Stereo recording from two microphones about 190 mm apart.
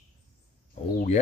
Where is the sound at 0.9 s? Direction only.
35° left (ahead or behind).